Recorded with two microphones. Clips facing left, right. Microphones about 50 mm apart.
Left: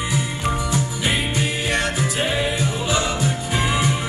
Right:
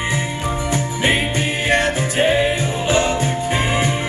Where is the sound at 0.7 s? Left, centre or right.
Right.